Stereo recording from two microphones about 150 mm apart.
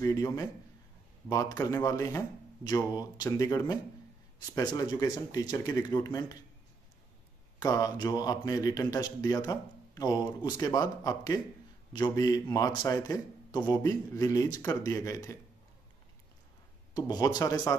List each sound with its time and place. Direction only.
0.0 s a man's voice: 20° left (ahead or behind)
7.5 s a man's voice: 25° left (ahead or behind)
16.9 s a man's voice: 25° left (ahead or behind)